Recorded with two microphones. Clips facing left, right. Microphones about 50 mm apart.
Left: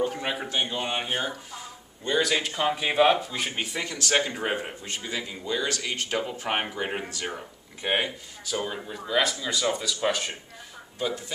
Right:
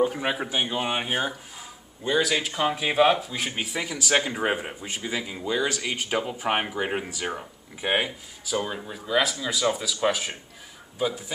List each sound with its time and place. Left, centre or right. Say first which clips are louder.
0.0 s speech: right 3 dB; centre